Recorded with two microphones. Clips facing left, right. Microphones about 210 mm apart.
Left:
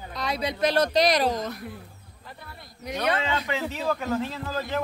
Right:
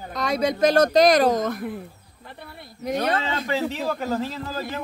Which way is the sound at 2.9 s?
50° right (ahead or behind).